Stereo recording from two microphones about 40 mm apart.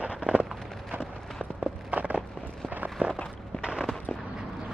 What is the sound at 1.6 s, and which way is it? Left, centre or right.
Run, right.